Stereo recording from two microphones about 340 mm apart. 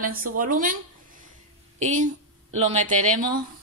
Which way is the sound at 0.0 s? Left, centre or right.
Right.